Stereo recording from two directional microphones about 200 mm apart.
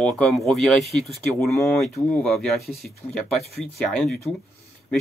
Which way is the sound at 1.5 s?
15° left (ahead or behind).